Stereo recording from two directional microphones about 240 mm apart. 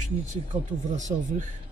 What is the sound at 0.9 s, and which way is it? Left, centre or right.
Speech, right.